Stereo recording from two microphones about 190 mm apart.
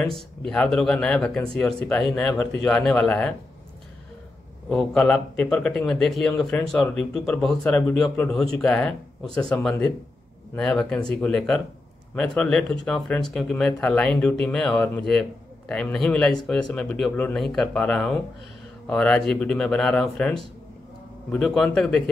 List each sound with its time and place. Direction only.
0.0 s speech: 5° left (ahead or behind)
4.6 s speech: 5° left (ahead or behind)